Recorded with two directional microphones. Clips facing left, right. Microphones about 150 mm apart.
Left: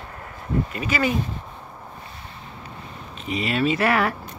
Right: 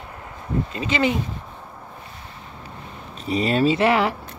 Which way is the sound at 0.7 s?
25° right (ahead or behind).